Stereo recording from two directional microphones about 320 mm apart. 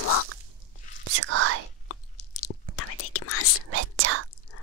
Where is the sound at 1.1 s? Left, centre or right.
Right.